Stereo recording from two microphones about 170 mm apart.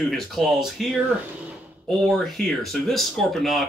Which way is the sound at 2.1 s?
Centre (ahead or behind).